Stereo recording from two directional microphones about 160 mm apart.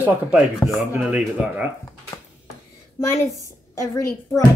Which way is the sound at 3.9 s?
20° left (ahead or behind).